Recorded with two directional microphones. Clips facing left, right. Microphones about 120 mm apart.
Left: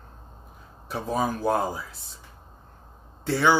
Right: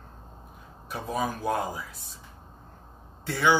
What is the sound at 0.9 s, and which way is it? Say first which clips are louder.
Speech: left 3 dB; 30° left (ahead or behind).